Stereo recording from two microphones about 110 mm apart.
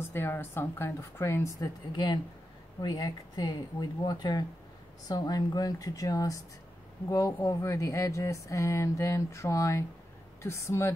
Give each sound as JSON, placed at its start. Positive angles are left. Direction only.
{"t": 0.1, "sound": "speech", "side_deg": 20}
{"t": 1.9, "sound": "speech", "side_deg": 40}